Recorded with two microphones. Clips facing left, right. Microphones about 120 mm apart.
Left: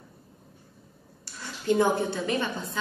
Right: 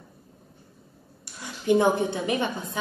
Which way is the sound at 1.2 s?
15° right (ahead or behind).